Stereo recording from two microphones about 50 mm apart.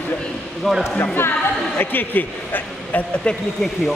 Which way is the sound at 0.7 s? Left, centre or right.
Centre.